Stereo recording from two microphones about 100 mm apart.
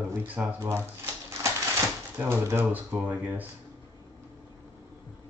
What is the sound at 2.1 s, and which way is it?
Speech, 25° right (ahead or behind).